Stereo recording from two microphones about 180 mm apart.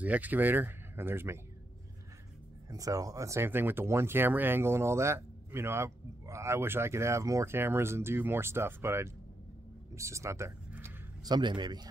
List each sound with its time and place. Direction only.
0.0 s speech: 10° right (ahead or behind)
2.7 s speech: 20° right (ahead or behind)
9.9 s a sound: 15° right (ahead or behind)
11.3 s a man's voice: 25° right (ahead or behind)